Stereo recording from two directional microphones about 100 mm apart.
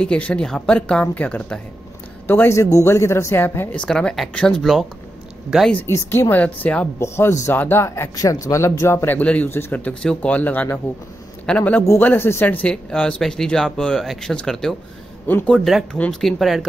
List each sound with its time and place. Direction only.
0.0 s speech: 10° left (ahead or behind)
3.8 s speech: 10° left (ahead or behind)
5.9 s speech: 25° left (ahead or behind)
7.0 s speech: 30° left (ahead or behind)
12.6 s speech: 10° left (ahead or behind)